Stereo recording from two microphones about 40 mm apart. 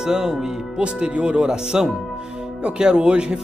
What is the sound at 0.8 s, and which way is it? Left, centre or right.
Speech, right.